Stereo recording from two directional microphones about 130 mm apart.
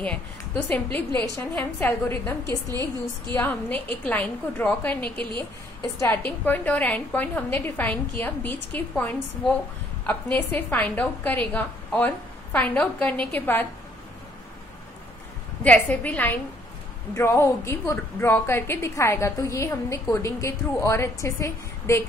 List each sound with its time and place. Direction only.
0.9 s a woman's voice: 10° left (ahead or behind)
2.7 s a woman's voice: 30° right (ahead or behind)
3.3 s a woman's voice: 15° left (ahead or behind)
15.6 s a woman's voice: 10° left (ahead or behind)